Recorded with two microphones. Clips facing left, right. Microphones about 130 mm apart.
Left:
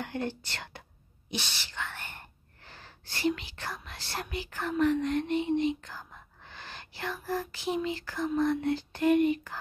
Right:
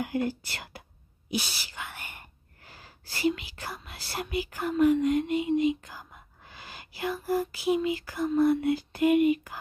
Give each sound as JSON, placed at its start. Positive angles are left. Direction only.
{"t": 0.0, "sound": "speech", "side_deg": -10}